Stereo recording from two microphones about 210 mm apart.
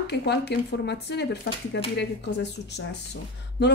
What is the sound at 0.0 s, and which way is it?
A woman's voice, 50° left (ahead or behind).